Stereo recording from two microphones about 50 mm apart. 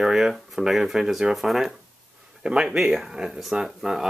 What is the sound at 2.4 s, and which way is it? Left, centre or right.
Speech, centre.